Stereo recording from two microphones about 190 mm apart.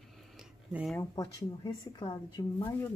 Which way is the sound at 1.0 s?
20° left (ahead or behind).